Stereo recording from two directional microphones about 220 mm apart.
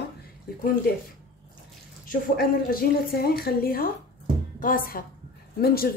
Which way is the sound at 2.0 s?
40° left (ahead or behind).